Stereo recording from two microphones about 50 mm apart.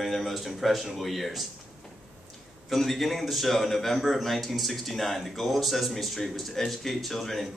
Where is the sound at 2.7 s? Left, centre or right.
Centre.